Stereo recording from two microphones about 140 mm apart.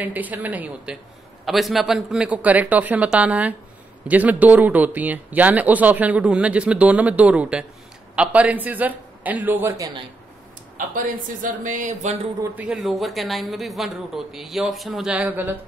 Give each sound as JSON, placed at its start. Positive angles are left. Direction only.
{"t": 0.0, "sound": "speech", "side_deg": -10}
{"t": 1.4, "sound": "speech", "side_deg": 0}
{"t": 10.8, "sound": "speech", "side_deg": -80}
{"t": 11.4, "sound": "speech", "side_deg": -65}
{"t": 12.5, "sound": "a man's voice", "side_deg": -5}